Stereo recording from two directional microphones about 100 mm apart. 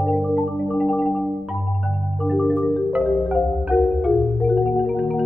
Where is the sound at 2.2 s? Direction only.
5° left (ahead or behind).